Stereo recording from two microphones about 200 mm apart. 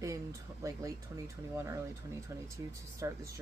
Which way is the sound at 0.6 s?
15° right (ahead or behind).